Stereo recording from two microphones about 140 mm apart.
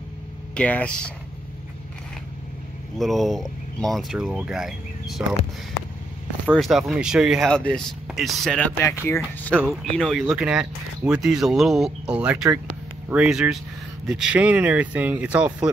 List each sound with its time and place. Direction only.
0.6 s speech: 10° left (ahead or behind)
3.0 s speech: centre (ahead or behind)
6.5 s speech: centre (ahead or behind)
8.7 s speech: 15° left (ahead or behind)
9.6 s speech: centre (ahead or behind)